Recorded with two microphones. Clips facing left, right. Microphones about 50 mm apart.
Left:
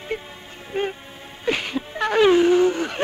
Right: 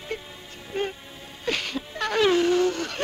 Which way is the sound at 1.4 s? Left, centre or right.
Centre.